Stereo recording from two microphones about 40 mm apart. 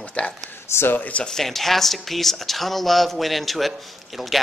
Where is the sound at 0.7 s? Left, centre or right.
Left.